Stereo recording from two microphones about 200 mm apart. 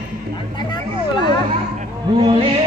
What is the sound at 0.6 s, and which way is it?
Hubbub, 20° left (ahead or behind).